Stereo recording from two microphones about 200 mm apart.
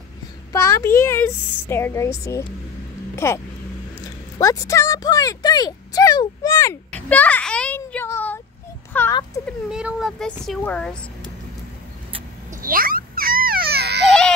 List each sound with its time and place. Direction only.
0.5 s speech: 15° left (ahead or behind)
9.7 s a child's voice: 5° right (ahead or behind)
12.6 s a sound: 45° right (ahead or behind)